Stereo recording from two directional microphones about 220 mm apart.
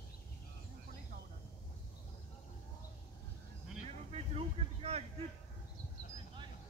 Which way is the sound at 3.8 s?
25° right (ahead or behind).